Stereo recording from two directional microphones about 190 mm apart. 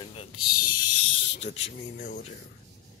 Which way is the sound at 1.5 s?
35° left (ahead or behind).